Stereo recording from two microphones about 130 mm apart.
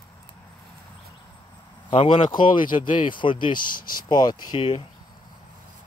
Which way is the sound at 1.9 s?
45° left (ahead or behind).